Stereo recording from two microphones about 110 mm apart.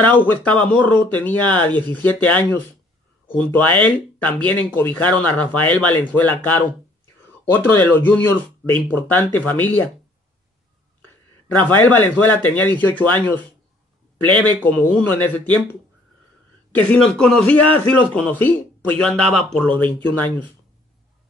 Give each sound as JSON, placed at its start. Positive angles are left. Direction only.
{"t": 0.3, "sound": "speech", "side_deg": 15}
{"t": 11.5, "sound": "speech", "side_deg": 15}
{"t": 14.2, "sound": "speech", "side_deg": 15}
{"t": 16.7, "sound": "speech", "side_deg": 10}